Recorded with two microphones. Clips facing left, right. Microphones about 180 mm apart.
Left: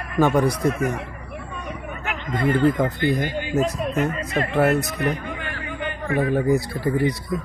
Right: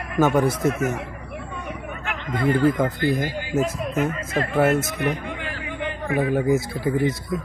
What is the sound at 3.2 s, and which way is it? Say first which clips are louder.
Speech: left 1 dB; 20° left (ahead or behind).